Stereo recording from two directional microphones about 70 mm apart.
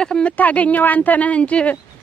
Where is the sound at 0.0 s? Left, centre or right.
Centre.